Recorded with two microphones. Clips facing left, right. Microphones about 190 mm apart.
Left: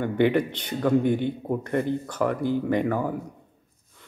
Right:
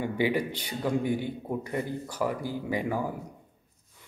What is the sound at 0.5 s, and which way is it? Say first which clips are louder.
Speech: left 6 dB; 10° right (ahead or behind).